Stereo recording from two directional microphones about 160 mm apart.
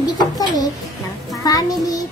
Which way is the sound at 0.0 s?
25° left (ahead or behind).